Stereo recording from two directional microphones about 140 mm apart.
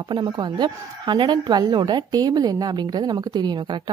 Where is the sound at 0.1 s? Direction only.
35° right (ahead or behind).